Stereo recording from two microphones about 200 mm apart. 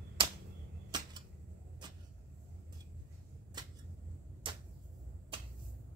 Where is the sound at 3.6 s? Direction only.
20° right (ahead or behind).